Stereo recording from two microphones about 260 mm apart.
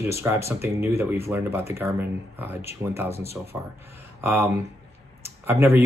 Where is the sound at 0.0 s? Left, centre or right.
Centre.